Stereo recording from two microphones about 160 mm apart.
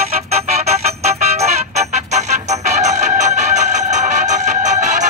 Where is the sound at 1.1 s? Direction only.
40° right (ahead or behind).